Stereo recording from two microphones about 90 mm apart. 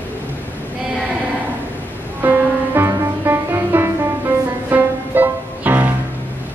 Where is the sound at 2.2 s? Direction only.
25° right (ahead or behind).